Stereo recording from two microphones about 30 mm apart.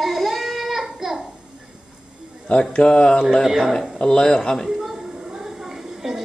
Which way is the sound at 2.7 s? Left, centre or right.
Left.